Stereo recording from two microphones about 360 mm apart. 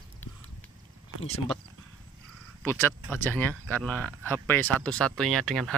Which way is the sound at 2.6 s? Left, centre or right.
Centre.